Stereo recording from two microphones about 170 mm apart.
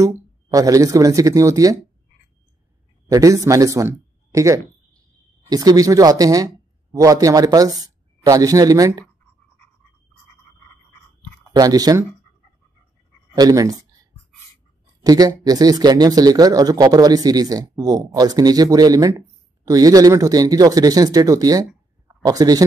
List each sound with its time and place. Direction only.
0.0 s speech: 20° right (ahead or behind)
3.1 s a man's voice: 20° right (ahead or behind)
11.5 s speech: 20° right (ahead or behind)
13.3 s speech: 20° right (ahead or behind)
15.0 s speech: 20° right (ahead or behind)